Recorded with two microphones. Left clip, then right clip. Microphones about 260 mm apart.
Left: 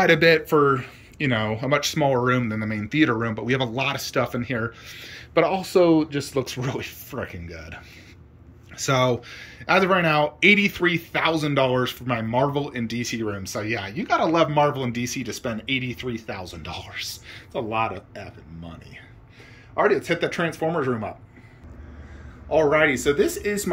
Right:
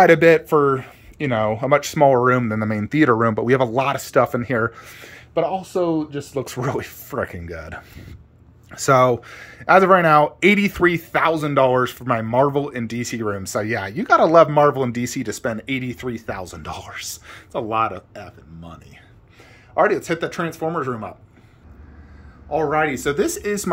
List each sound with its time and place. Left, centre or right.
0.0 s speech: centre
6.4 s speech: centre
19.7 s speech: centre
22.6 s speech: centre